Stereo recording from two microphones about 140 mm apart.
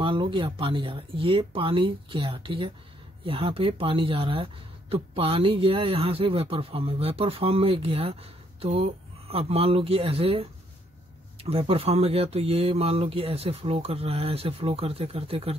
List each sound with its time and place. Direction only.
0.0 s speech: 35° right (ahead or behind)